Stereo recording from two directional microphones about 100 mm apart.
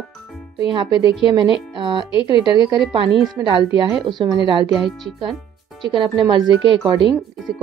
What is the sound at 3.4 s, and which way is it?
A woman's voice, 55° right (ahead or behind).